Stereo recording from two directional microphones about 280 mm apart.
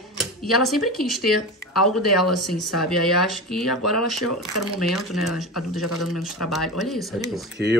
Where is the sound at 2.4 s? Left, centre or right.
Centre.